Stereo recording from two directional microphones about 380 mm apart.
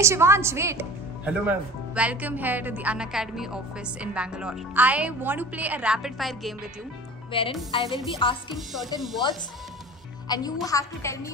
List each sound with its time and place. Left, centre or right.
0.0 s speech: centre
7.3 s a woman's voice: centre
7.8 s music: centre
8.2 s a woman's voice: centre
10.2 s a woman's voice: centre